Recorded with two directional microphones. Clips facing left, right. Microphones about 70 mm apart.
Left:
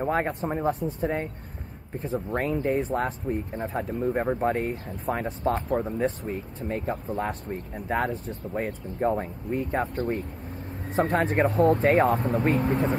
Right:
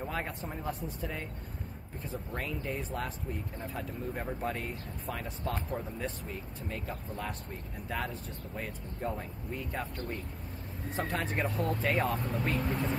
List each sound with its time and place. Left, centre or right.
0.0 s speech: left